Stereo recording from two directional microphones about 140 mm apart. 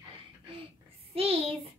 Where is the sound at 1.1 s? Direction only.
45° right (ahead or behind).